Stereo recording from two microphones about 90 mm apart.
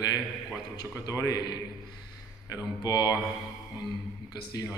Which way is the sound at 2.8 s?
45° left (ahead or behind).